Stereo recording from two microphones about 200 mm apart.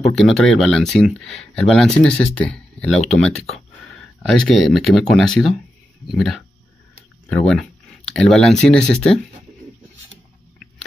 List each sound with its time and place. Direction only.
0.0 s speech: centre (ahead or behind)